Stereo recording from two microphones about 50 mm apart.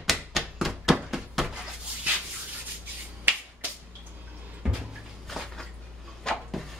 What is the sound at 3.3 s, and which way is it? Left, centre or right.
Finger snapping, right.